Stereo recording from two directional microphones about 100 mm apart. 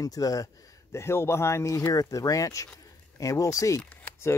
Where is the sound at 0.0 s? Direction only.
35° left (ahead or behind).